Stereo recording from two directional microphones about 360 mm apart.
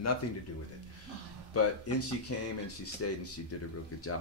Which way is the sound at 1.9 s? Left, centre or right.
Left.